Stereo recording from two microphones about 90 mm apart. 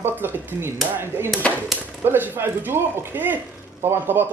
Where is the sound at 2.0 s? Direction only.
25° right (ahead or behind).